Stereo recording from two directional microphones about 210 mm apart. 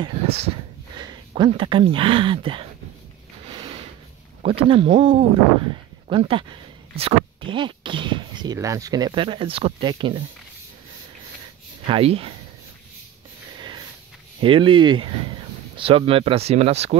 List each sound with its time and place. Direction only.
0.0 s speech: 25° right (ahead or behind)
3.5 s a sound: 25° right (ahead or behind)
4.4 s speech: 25° right (ahead or behind)
11.8 s speech: 25° right (ahead or behind)
13.6 s sniff: 20° right (ahead or behind)
14.4 s speech: 25° right (ahead or behind)